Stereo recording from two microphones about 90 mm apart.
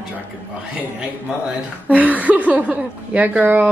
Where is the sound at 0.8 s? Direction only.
10° right (ahead or behind).